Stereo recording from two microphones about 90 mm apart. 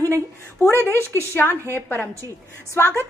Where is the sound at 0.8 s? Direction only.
30° left (ahead or behind).